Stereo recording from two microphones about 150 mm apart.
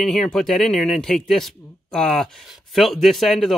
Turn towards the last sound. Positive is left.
turn(degrees=0)  # may be behind; listen again after turning